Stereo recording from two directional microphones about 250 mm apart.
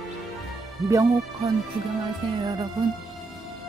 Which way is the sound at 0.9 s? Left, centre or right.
Centre.